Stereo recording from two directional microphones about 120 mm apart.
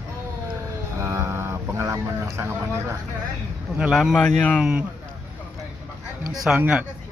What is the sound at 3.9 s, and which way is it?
Speech, centre (ahead or behind).